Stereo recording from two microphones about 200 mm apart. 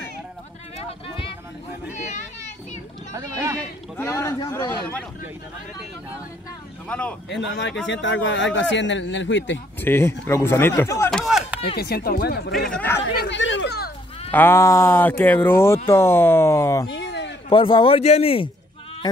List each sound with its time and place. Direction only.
0.8 s a sound: 25° left (ahead or behind)
3.1 s speech: 15° right (ahead or behind)
3.9 s speech: 10° left (ahead or behind)
6.9 s speech: 5° left (ahead or behind)
7.2 s speech: 60° left (ahead or behind)
9.8 s speech: 10° left (ahead or behind)
11.1 s chop: centre (ahead or behind)
11.7 s speech: 50° left (ahead or behind)
12.6 s speech: 10° left (ahead or behind)
13.2 s chatter: 65° left (ahead or behind)
14.3 s speech: 10° left (ahead or behind)
16.9 s a sound: 60° left (ahead or behind)
17.5 s speech: 25° left (ahead or behind)